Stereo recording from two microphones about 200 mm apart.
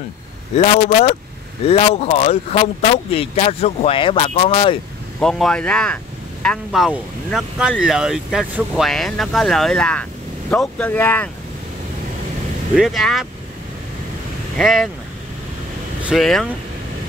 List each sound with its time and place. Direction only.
0.6 s speech: 35° left (ahead or behind)
5.2 s speech: centre (ahead or behind)
12.7 s speech: centre (ahead or behind)
14.6 s speech: centre (ahead or behind)
16.0 s speech: centre (ahead or behind)